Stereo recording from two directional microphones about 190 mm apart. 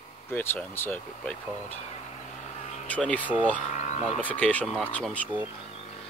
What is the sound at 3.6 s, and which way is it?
Speech, 40° left (ahead or behind).